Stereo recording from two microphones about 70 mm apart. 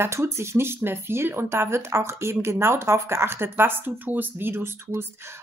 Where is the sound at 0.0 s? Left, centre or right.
Right.